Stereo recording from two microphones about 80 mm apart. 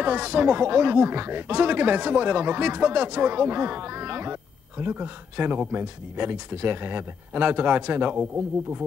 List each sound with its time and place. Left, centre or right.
0.0 s speech: centre